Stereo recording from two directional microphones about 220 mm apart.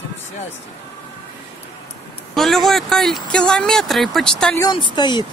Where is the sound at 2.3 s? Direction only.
Centre (ahead or behind).